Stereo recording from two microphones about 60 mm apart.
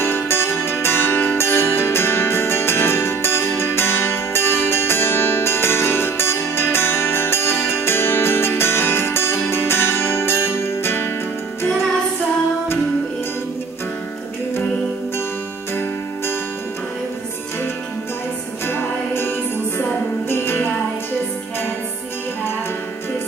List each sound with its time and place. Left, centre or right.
0.0 s music: left
18.7 s music: left